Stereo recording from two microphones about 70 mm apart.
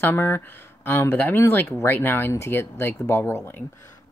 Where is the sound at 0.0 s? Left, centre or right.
Left.